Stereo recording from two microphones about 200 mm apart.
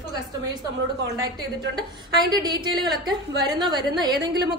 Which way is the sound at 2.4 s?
20° right (ahead or behind).